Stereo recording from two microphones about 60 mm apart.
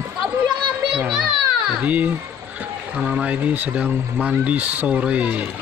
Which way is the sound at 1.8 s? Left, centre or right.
Right.